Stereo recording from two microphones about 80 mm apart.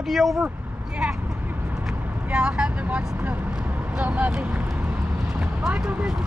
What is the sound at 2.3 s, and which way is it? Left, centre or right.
Speech, centre.